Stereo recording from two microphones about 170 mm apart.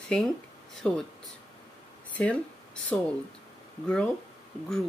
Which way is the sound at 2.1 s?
5° left (ahead or behind).